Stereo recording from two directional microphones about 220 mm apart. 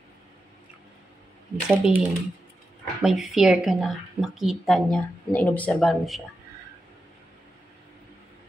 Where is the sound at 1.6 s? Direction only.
5° right (ahead or behind).